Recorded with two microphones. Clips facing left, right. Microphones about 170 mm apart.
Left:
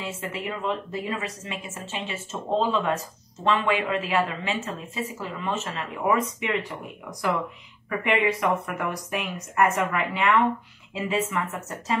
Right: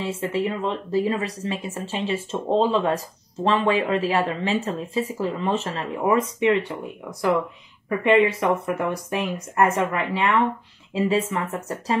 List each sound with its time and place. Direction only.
0.0 s speech: 35° right (ahead or behind)